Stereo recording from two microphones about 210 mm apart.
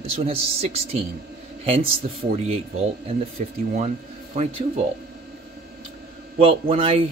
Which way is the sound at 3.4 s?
35° right (ahead or behind).